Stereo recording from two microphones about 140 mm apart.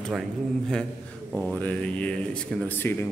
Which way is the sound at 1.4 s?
10° left (ahead or behind).